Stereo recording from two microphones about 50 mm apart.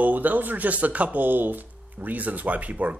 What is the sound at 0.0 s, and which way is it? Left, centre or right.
Speech, right.